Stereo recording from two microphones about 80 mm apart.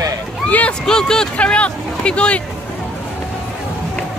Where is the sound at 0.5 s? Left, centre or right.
Centre.